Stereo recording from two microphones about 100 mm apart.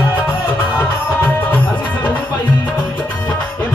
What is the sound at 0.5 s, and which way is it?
Music, 20° left (ahead or behind).